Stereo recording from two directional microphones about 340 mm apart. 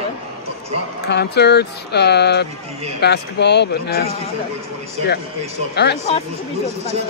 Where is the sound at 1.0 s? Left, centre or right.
Left.